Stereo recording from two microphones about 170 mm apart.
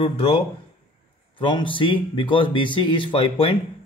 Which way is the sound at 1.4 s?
30° left (ahead or behind).